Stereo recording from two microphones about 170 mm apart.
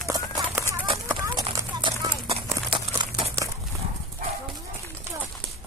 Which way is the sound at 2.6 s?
30° right (ahead or behind).